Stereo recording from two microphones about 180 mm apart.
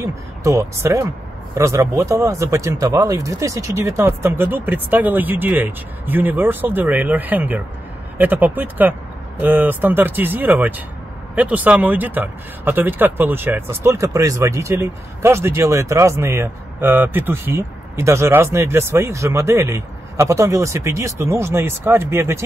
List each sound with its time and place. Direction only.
0.0 s speech: 15° right (ahead or behind)